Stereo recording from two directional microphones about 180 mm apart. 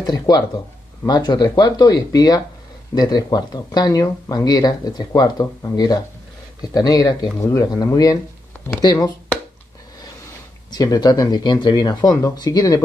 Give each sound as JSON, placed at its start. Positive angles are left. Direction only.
{"t": 0.0, "sound": "speech", "side_deg": 20}
{"t": 10.7, "sound": "speech", "side_deg": 20}